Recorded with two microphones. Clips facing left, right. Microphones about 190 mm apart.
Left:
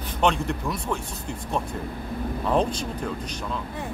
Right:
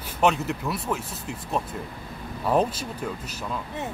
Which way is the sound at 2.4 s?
5° right (ahead or behind).